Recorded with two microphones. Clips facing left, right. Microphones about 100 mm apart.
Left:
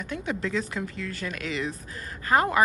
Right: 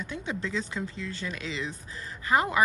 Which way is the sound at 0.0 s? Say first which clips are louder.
Left 3 dB; 25° right (ahead or behind).